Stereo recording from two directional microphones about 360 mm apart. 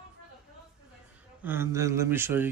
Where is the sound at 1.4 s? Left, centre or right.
Centre.